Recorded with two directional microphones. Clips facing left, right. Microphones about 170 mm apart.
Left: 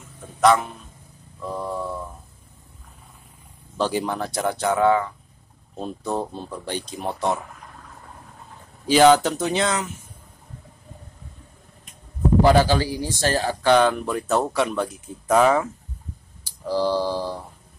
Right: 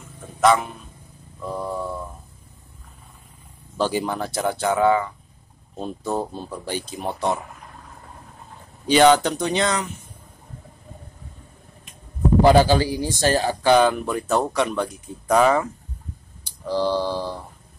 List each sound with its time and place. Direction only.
0.4 s speech: centre (ahead or behind)
1.4 s a sound: centre (ahead or behind)
3.7 s speech: centre (ahead or behind)
8.8 s speech: centre (ahead or behind)
12.4 s speech: 20° right (ahead or behind); by 17.4 s 10° left (ahead or behind)